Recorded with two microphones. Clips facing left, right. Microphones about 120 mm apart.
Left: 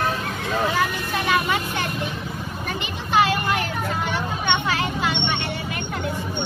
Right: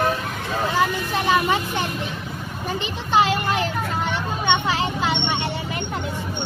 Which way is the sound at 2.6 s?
25° right (ahead or behind).